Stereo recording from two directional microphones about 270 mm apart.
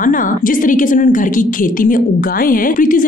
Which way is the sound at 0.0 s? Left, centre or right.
Left.